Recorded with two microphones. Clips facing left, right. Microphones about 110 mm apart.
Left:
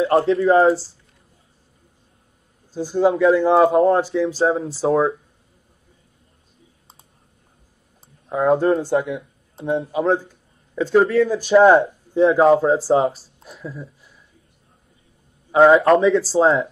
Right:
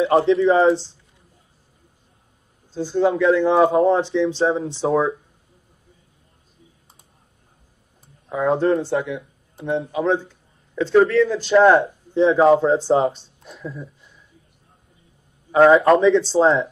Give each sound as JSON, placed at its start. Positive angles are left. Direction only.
{"t": 0.2, "sound": "speech", "side_deg": 5}
{"t": 2.7, "sound": "speech", "side_deg": 10}
{"t": 8.4, "sound": "speech", "side_deg": 0}
{"t": 9.0, "sound": "speech", "side_deg": 20}
{"t": 9.8, "sound": "a man's voice", "side_deg": 5}
{"t": 15.5, "sound": "speech", "side_deg": 0}